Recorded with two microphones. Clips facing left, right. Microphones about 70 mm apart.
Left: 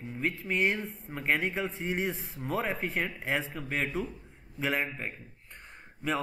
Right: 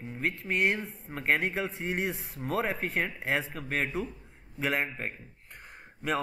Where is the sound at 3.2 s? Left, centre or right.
Centre.